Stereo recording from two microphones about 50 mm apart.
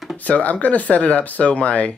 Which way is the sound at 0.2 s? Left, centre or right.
Left.